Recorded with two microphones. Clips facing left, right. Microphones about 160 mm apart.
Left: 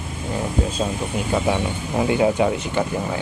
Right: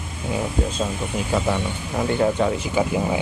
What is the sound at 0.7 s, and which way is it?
Speech, 5° left (ahead or behind).